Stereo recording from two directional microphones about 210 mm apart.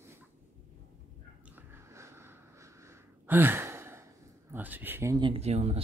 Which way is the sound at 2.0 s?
10° right (ahead or behind).